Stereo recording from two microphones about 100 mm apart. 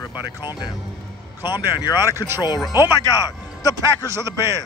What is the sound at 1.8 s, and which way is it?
Speech, 40° left (ahead or behind).